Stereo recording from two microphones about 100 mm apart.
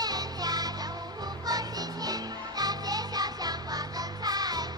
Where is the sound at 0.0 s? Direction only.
40° right (ahead or behind).